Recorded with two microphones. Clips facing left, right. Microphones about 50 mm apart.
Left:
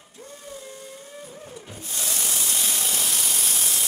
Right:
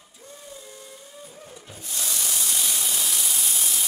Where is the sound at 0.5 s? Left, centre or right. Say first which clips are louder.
Left 6 dB; left.